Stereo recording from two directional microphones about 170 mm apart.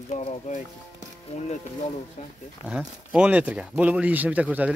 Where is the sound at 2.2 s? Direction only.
45° left (ahead or behind).